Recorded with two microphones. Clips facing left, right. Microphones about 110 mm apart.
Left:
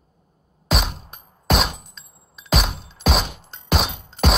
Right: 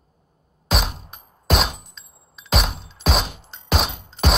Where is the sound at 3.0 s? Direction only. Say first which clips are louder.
Left 1 dB; centre (ahead or behind).